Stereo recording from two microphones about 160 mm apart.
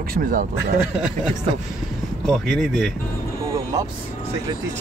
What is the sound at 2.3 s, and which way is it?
Speech, 5° left (ahead or behind).